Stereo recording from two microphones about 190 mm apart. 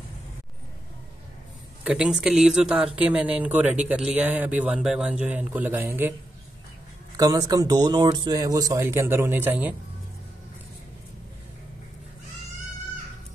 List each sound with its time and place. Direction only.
1.9 s speech: 5° right (ahead or behind)
7.2 s speech: 20° right (ahead or behind)